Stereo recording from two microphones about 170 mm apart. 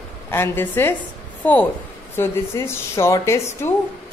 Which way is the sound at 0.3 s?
15° left (ahead or behind).